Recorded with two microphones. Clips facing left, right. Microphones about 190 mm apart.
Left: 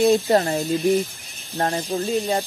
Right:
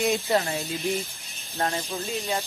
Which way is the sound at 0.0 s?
35° left (ahead or behind).